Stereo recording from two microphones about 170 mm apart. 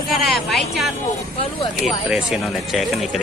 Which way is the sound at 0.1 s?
Centre (ahead or behind).